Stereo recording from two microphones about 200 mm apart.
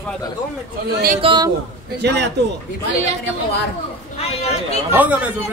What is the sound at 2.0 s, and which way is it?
Speech, 60° right (ahead or behind).